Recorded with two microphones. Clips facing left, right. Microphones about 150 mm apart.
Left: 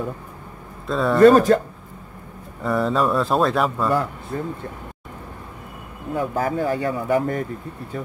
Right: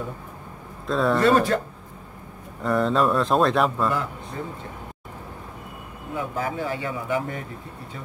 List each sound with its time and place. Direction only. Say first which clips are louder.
0.8 s speech: left 1 dB; centre (ahead or behind)
1.2 s speech: left 10 dB; 40° left (ahead or behind)
2.6 s speech: left 1 dB; centre (ahead or behind)
4.3 s speech: left 6 dB; 50° left (ahead or behind)
6.1 s speech: left 5 dB; 45° left (ahead or behind)